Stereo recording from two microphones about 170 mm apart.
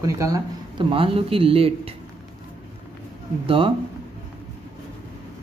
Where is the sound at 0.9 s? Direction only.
35° right (ahead or behind).